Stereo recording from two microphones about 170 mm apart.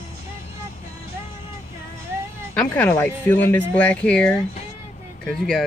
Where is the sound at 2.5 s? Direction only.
10° left (ahead or behind).